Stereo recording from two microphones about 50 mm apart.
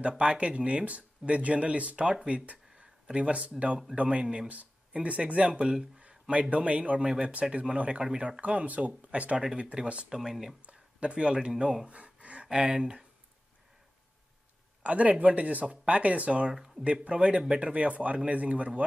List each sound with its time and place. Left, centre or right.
0.2 s speech: right
8.4 s speech: right
10.0 s speech: centre
10.6 s speech: right
11.9 s gasp: right
12.4 s speech: centre
14.8 s speech: right
16.5 s speech: centre
16.8 s speech: right